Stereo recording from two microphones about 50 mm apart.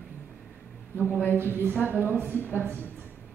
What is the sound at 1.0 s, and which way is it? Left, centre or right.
Speech, left.